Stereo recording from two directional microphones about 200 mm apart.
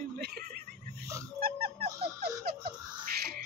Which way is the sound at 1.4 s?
50° right (ahead or behind).